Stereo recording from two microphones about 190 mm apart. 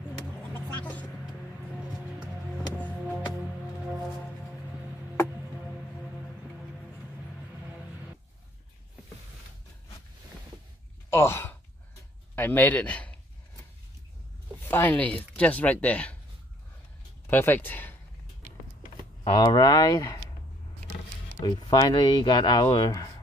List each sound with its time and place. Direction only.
0.5 s vehicle: 10° left (ahead or behind)
11.1 s speech: 15° left (ahead or behind)
14.6 s speech: 10° left (ahead or behind)
17.3 s speech: 10° left (ahead or behind)
19.3 s speech: 20° left (ahead or behind)
21.4 s speech: 20° left (ahead or behind)